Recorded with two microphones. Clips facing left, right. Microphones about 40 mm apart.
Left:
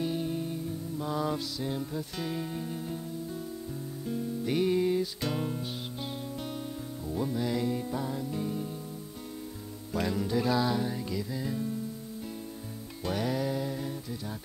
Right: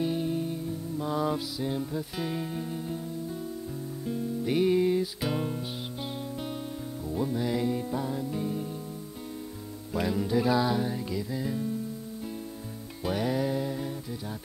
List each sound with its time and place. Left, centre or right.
0.0 s music: centre
4.0 s music: centre
7.1 s music: centre
9.9 s music: centre
13.0 s music: centre